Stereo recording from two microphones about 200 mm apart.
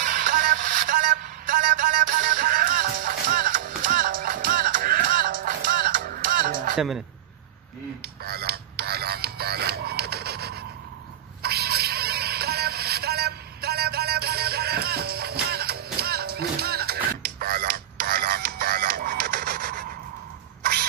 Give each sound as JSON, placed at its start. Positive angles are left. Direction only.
{"t": 0.0, "sound": "music", "side_deg": -40}
{"t": 8.2, "sound": "a sound", "side_deg": -50}
{"t": 15.5, "sound": "music", "side_deg": -50}